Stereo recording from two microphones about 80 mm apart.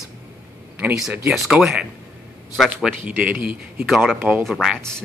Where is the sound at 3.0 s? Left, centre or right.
Centre.